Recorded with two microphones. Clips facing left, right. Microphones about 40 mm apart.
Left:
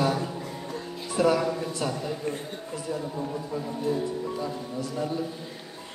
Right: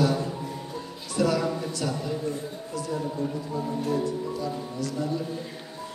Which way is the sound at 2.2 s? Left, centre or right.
Left.